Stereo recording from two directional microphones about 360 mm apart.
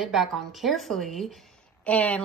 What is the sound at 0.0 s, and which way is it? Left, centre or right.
A woman's voice, centre.